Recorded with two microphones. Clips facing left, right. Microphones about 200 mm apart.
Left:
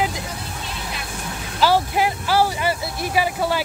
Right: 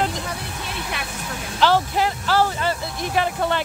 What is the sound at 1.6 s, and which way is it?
Speech, 10° left (ahead or behind).